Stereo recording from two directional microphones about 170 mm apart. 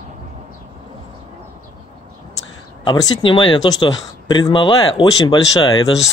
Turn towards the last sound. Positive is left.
turn(degrees=25)  # may be behind; listen again after turning